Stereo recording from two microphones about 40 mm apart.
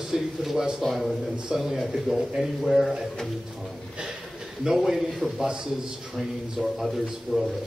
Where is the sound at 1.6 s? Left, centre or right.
Centre; by 4.1 s right.